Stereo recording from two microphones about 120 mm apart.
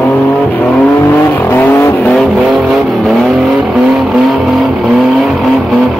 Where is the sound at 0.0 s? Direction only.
15° left (ahead or behind).